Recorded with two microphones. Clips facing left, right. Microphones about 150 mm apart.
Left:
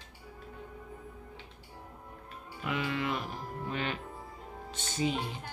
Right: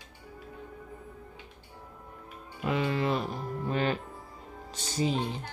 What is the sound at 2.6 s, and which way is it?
Speech, 35° right (ahead or behind).